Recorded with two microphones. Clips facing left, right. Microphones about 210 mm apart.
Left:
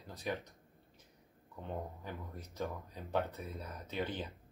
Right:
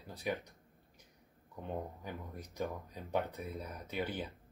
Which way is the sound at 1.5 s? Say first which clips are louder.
Right 2 dB; 15° right (ahead or behind).